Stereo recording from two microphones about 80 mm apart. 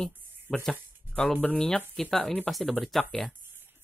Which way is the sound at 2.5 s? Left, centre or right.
Centre.